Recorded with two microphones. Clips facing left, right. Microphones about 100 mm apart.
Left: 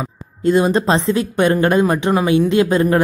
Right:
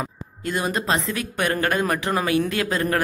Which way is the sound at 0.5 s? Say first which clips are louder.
Left 9 dB; 25° left (ahead or behind).